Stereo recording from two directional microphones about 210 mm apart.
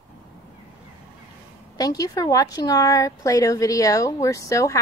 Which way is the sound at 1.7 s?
15° left (ahead or behind).